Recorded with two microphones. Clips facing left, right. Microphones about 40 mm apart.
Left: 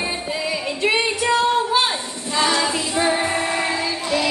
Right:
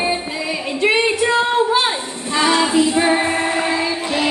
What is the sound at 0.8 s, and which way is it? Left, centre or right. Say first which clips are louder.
Music: right 4 dB; right.